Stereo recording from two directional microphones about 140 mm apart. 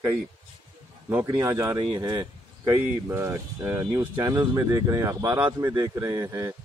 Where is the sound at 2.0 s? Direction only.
30° right (ahead or behind).